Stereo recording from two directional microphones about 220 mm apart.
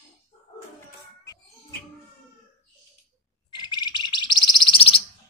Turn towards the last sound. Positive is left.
turn(degrees=25)  # may be behind; listen again after turning